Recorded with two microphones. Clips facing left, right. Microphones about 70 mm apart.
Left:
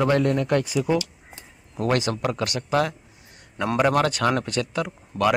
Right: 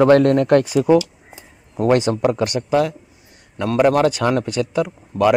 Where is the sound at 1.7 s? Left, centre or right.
Right.